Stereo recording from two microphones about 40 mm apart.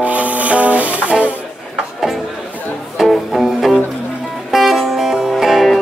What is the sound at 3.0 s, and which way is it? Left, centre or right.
Music, centre.